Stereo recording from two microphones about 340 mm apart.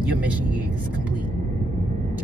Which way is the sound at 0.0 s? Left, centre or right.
Centre.